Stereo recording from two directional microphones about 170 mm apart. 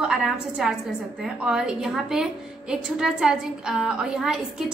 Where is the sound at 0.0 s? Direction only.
5° right (ahead or behind).